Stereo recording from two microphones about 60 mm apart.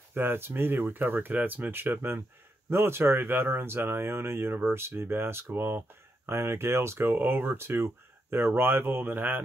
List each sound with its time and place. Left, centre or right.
0.1 s speech: right